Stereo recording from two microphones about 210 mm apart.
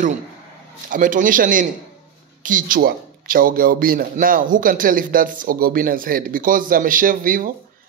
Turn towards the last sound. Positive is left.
turn(degrees=-40)  # may be behind; listen again after turning